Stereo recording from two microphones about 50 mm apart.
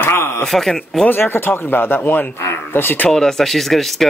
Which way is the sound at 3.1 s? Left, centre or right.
Centre.